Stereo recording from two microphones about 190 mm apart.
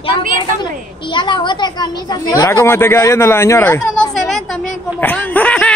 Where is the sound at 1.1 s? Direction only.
25° left (ahead or behind); by 4.4 s 5° left (ahead or behind).